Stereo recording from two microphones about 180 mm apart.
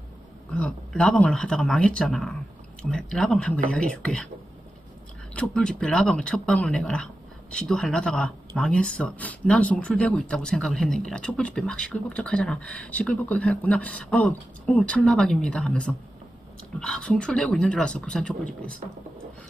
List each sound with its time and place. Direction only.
0.6 s speech: 5° left (ahead or behind)
5.3 s speech: 5° left (ahead or behind)